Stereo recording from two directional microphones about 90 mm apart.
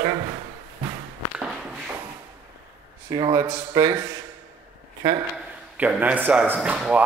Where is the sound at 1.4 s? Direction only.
10° right (ahead or behind).